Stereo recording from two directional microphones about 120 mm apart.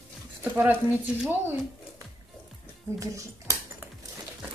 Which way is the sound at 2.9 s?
25° right (ahead or behind).